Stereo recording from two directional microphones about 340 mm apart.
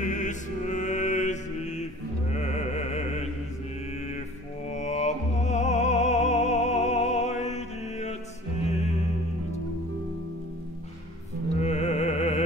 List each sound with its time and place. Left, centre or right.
0.0 s mantra: left
4.6 s music: centre
11.6 s music: centre